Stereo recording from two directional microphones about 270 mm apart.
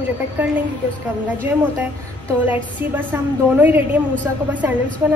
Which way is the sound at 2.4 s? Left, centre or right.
Centre.